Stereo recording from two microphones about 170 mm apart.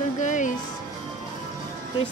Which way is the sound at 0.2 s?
45° left (ahead or behind).